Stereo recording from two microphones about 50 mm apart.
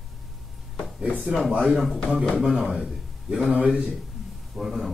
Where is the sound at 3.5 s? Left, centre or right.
Right.